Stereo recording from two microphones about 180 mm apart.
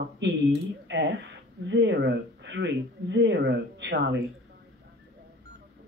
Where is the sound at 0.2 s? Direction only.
90° right.